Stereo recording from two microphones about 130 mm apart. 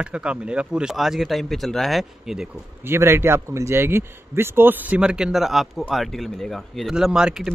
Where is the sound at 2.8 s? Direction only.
20° right (ahead or behind).